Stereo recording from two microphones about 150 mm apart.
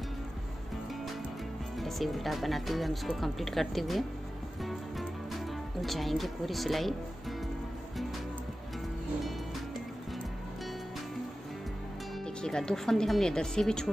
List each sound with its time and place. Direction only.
1.8 s speech: centre (ahead or behind)
4.6 s music: centre (ahead or behind)
12.4 s speech: 5° left (ahead or behind)